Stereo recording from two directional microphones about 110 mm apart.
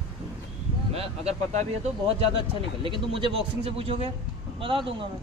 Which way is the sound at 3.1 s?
55° right (ahead or behind).